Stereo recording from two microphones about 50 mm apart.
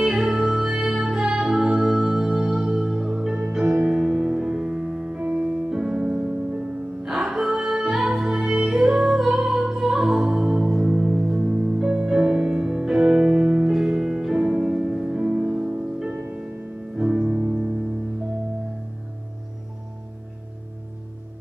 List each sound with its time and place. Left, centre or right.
0.2 s music: centre
3.6 s music: right
3.9 s music: centre